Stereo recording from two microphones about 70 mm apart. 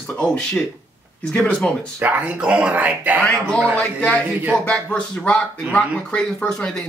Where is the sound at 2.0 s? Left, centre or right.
Right.